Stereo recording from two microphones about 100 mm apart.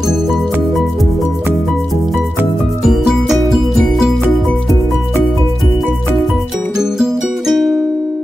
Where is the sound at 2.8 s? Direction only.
5° right (ahead or behind).